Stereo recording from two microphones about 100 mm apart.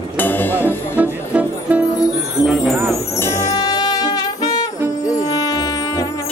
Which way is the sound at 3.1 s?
30° left (ahead or behind).